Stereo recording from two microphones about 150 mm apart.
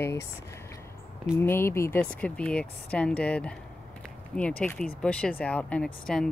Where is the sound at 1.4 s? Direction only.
15° left (ahead or behind).